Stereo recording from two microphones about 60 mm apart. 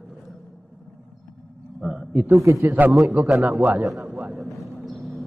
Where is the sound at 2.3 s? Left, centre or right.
Right.